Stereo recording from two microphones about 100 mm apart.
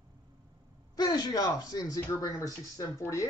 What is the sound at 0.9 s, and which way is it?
Speech, 40° left (ahead or behind).